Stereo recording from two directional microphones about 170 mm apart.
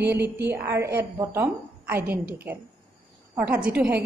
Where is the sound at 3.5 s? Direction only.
10° right (ahead or behind).